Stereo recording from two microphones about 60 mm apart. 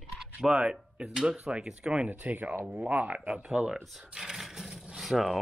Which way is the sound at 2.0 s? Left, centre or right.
Right.